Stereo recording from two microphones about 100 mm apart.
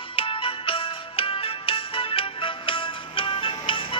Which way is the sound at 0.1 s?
65° left (ahead or behind).